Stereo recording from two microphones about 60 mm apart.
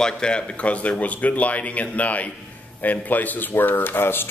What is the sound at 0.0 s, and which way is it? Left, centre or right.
Speech, centre.